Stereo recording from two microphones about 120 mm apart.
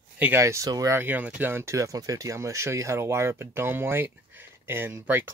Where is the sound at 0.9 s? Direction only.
15° right (ahead or behind).